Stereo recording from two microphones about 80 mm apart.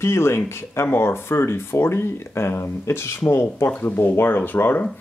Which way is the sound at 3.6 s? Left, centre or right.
Left.